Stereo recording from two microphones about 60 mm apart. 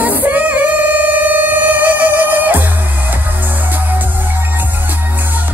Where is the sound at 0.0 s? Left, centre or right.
Right.